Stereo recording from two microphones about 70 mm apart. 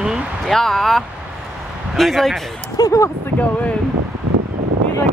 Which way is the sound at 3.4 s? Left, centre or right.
Centre.